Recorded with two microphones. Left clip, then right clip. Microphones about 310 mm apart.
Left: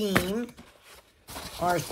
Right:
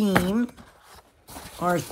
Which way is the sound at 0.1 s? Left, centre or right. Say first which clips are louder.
Right 4 dB; centre.